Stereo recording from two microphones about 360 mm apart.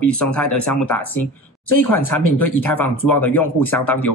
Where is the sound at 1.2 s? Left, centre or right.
Left.